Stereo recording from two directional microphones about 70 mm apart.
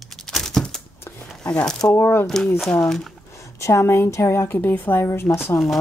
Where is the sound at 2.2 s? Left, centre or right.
Centre.